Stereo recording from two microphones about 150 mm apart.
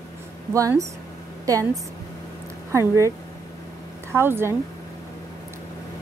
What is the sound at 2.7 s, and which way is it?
Speech, 20° right (ahead or behind).